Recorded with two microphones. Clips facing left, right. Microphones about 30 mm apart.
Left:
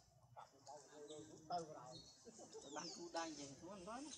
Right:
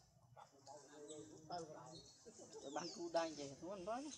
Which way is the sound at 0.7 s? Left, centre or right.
Centre.